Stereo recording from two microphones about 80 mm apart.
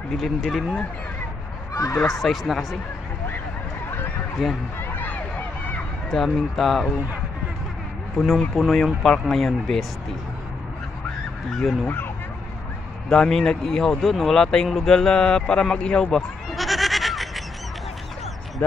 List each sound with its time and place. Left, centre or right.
0.2 s speech: centre
1.7 s a sound: left
2.0 s speech: centre
4.4 s speech: centre
4.7 s a sound: left
6.0 s speech: centre
8.4 s speech: centre
11.8 s speech: left
13.1 s speech: centre